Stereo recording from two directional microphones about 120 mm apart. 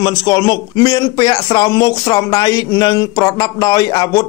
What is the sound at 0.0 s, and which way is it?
Speech, 30° left (ahead or behind).